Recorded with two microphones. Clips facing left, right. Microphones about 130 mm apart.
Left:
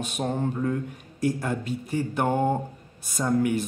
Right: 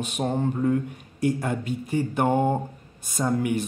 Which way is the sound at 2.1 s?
10° right (ahead or behind).